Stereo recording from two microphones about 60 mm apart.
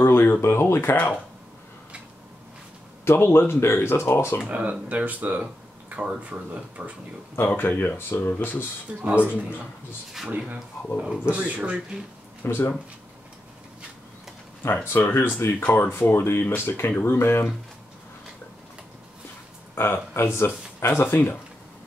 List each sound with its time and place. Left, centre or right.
0.0 s speech: left
3.1 s speech: left
4.5 s speech: right
7.3 s speech: left
8.9 s speech: centre
9.2 s speech: left
11.0 s speech: centre
12.4 s speech: left
14.6 s speech: left
19.7 s speech: left